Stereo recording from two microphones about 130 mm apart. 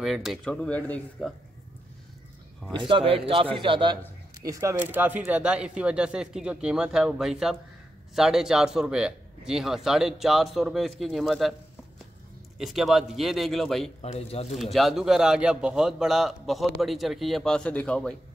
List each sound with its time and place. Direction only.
0.0 s speech: centre (ahead or behind)
2.7 s a man's voice: 40° right (ahead or behind)
4.5 s a man's voice: 25° right (ahead or behind); by 11.5 s centre (ahead or behind)
12.5 s a man's voice: centre (ahead or behind)
14.0 s speech: 50° left (ahead or behind)
14.6 s a man's voice: centre (ahead or behind)